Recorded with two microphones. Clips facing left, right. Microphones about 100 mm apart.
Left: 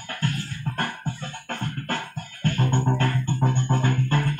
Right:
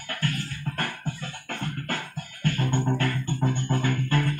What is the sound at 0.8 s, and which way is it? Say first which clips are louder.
Music: left 3 dB; 35° left (ahead or behind).